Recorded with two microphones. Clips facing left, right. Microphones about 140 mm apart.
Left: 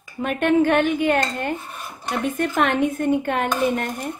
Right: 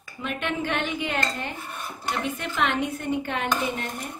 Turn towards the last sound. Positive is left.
turn(degrees=55)  # may be behind; listen again after turning